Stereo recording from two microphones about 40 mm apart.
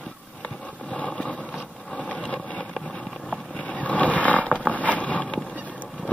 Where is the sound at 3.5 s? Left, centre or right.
Left.